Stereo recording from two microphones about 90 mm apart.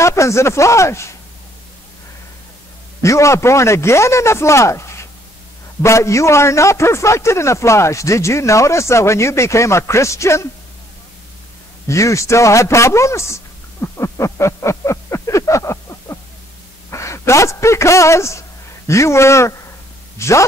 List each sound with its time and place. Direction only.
0.0 s a man's voice: 30° left (ahead or behind)
3.0 s a man's voice: 35° left (ahead or behind)
11.9 s a man's voice: 35° left (ahead or behind)